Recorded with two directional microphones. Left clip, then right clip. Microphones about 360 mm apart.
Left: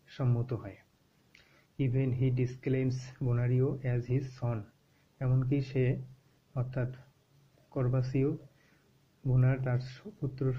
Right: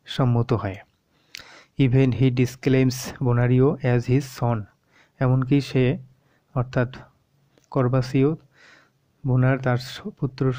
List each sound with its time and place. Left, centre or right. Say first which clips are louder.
0.0 s speech: right 13 dB; right